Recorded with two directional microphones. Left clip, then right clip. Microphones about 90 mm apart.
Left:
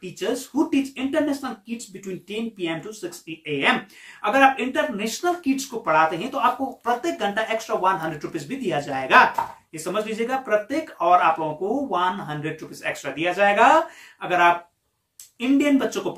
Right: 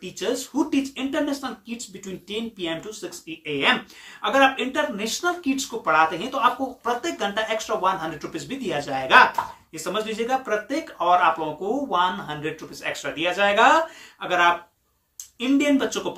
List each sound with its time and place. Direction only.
0.0 s speech: 20° right (ahead or behind)
4.2 s speech: 15° right (ahead or behind)